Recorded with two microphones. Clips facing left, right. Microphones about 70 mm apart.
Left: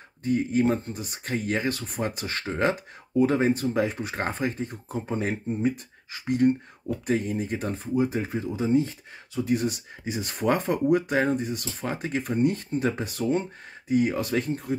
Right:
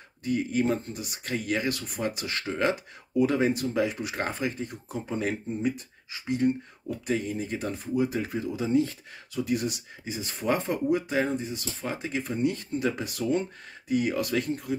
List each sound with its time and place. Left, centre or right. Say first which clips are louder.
0.2 s speech: left 3 dB; left
6.1 s speech: left 4 dB; left